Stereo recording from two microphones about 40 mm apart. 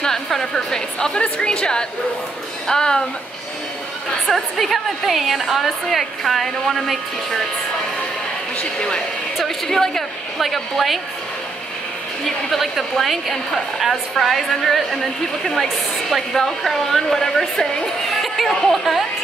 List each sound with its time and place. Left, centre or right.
0.0 s a woman's voice: centre
4.6 s speech: centre
8.5 s speech: left
9.4 s a woman's voice: centre
10.4 s speech: centre
12.3 s speech: centre